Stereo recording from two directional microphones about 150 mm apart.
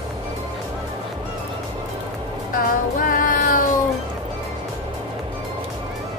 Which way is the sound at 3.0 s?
65° left (ahead or behind).